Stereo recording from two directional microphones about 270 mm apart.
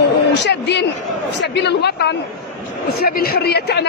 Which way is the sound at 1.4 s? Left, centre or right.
Left.